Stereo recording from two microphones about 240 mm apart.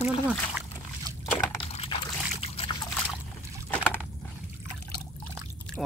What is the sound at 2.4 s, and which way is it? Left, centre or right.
Trickle, left.